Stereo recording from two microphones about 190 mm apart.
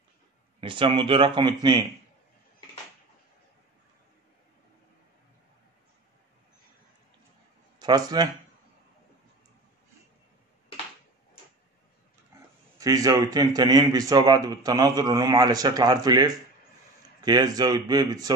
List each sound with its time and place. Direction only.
0.6 s a man's voice: 25° right (ahead or behind)
7.8 s a man's voice: 20° right (ahead or behind)
12.7 s a man's voice: 20° right (ahead or behind)